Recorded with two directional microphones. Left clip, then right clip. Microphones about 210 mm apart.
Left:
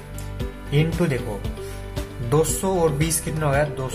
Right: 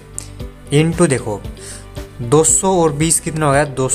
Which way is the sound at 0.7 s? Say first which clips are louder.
Right 9 dB; 45° right (ahead or behind).